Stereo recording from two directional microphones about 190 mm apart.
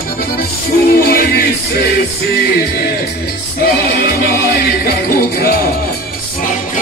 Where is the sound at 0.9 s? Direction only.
55° left (ahead or behind).